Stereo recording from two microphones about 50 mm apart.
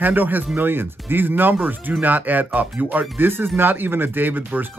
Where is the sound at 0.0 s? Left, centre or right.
Right.